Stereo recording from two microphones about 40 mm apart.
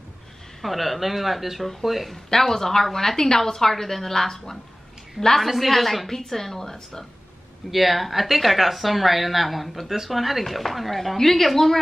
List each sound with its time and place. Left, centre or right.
0.6 s speech: centre
2.2 s a woman's voice: centre
7.7 s speech: centre